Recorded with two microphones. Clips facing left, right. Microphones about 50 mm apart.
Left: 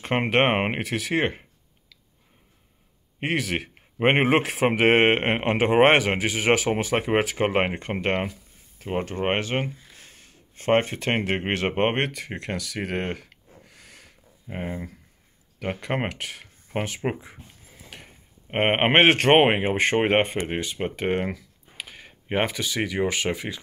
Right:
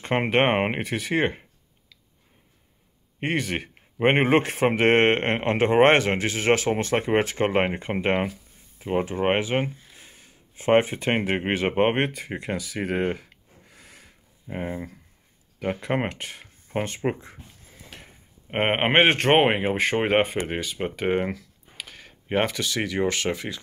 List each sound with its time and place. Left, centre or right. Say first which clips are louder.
0.0 s speech: even; centre
3.2 s speech: even; centre
9.3 s speech: right 1 dB; centre
12.4 s a sound: right 1 dB; centre
14.5 s speech: right 1 dB; centre
15.9 s speech: right 2 dB; centre
16.7 s speech: right 1 dB; centre
18.5 s speech: left 1 dB; centre
19.6 s speech: left 1 dB; centre